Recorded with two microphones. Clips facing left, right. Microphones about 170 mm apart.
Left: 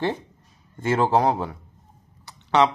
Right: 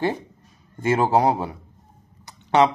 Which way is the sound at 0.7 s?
10° right (ahead or behind).